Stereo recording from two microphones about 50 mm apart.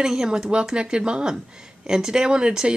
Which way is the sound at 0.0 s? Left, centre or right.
Centre.